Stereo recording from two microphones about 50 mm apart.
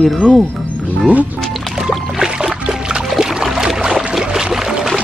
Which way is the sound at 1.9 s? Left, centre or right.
Centre.